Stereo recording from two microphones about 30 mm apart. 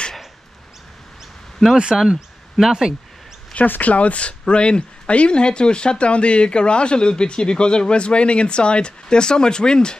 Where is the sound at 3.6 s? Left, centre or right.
Left.